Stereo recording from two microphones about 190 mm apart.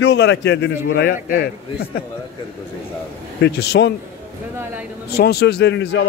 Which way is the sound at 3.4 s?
60° left (ahead or behind).